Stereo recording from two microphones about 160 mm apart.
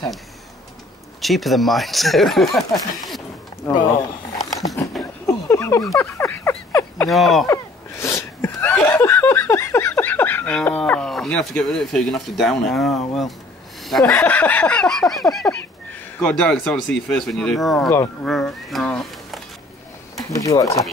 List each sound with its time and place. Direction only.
1.2 s speech: centre (ahead or behind)
5.2 s a sound: 20° left (ahead or behind)
7.1 s speech: centre (ahead or behind)
7.4 s sneeze: 15° left (ahead or behind)
8.9 s a sound: 15° left (ahead or behind)
13.8 s speech: centre (ahead or behind)
14.1 s a sound: 10° left (ahead or behind)
16.3 s speech: 5° left (ahead or behind)
20.2 s speech: 20° left (ahead or behind)